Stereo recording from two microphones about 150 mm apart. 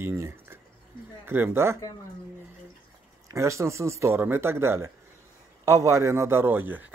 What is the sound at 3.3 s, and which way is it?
A man's voice, 20° right (ahead or behind).